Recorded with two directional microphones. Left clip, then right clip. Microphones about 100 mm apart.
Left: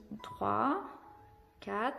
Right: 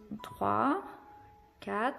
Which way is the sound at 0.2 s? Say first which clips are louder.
Right 2 dB; 30° right (ahead or behind).